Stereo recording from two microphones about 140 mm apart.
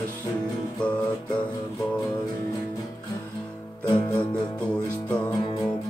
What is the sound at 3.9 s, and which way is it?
Music, 35° left (ahead or behind).